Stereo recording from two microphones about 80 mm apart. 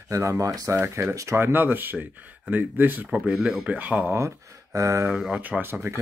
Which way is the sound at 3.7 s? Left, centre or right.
Centre.